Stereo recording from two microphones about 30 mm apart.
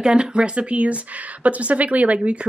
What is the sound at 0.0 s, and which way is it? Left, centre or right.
Speech, right.